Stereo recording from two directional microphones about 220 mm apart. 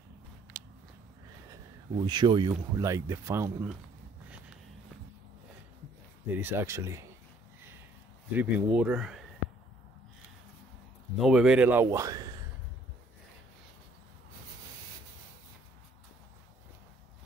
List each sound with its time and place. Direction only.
1.5 s a man's voice: 20° right (ahead or behind)
6.3 s a man's voice: 10° right (ahead or behind)
8.3 s speech: 5° right (ahead or behind)
11.1 s a man's voice: centre (ahead or behind)